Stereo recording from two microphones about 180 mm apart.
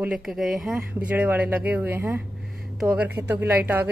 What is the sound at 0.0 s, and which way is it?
A woman's voice, 5° right (ahead or behind).